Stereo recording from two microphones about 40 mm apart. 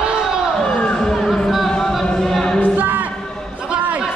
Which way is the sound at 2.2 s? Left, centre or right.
Centre.